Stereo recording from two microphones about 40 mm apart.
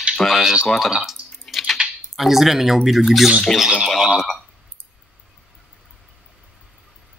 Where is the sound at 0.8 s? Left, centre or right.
Centre.